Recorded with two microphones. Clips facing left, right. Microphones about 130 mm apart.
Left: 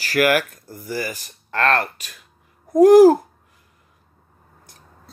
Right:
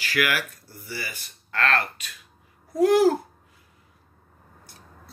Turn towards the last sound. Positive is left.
turn(degrees=45)  # may be behind; listen again after turning